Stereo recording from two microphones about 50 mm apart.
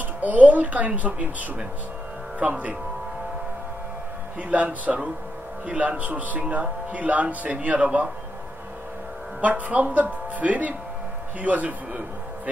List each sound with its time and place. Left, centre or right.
0.2 s speech: right
2.3 s speech: right
4.4 s speech: right
9.4 s speech: right